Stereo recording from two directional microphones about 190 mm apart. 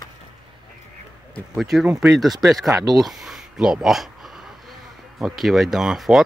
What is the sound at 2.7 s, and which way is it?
Speech, 20° right (ahead or behind).